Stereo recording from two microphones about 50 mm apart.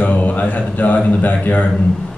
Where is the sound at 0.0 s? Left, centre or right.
Left.